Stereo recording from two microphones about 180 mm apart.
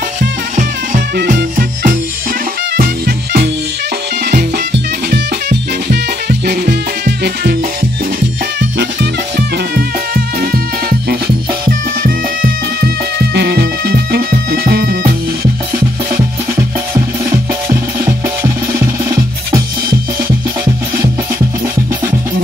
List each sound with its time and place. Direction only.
1.1 s music: 50° right (ahead or behind)
8.5 s music: 80° right
10.4 s music: 55° right (ahead or behind)
17.6 s music: 15° right (ahead or behind)